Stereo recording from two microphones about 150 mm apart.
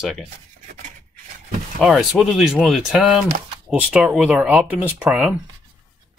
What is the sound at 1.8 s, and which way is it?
Speech, centre (ahead or behind).